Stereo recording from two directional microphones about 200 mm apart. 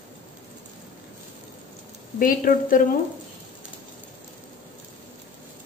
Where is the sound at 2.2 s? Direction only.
45° left (ahead or behind).